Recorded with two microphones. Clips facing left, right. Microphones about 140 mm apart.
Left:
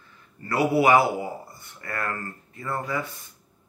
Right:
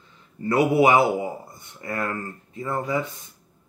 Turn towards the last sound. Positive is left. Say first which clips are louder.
# right 3 dB
turn(degrees=-20)  # may be behind; listen again after turning